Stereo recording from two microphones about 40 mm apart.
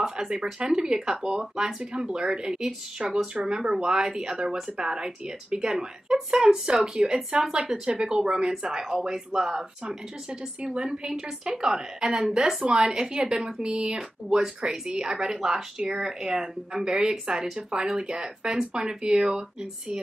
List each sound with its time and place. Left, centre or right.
0.2 s speech: centre
14.3 s speech: centre